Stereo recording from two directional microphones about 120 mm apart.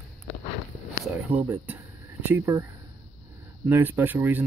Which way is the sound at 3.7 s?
15° right (ahead or behind).